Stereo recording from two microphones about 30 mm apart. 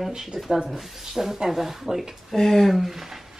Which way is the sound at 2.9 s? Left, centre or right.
Centre.